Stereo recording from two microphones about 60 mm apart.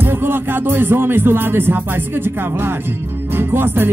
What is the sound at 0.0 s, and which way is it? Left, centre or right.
Music, right.